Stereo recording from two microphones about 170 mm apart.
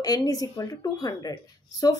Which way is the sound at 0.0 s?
20° left (ahead or behind).